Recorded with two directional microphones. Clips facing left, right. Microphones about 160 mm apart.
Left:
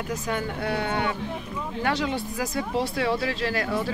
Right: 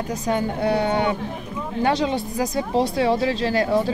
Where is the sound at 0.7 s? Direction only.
20° right (ahead or behind).